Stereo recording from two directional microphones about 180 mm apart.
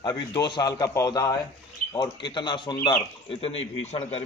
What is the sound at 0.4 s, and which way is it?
A man's voice, 20° left (ahead or behind).